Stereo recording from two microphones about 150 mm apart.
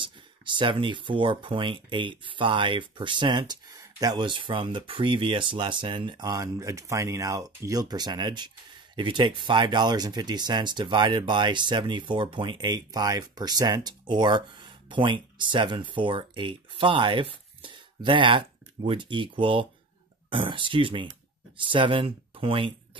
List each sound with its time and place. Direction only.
0.0 s speech: 35° right (ahead or behind)